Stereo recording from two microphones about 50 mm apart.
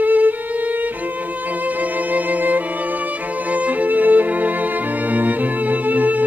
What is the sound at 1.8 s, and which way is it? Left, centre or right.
Music, right.